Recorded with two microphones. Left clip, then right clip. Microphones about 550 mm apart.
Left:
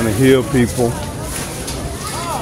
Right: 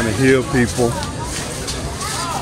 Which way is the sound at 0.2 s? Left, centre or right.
Left.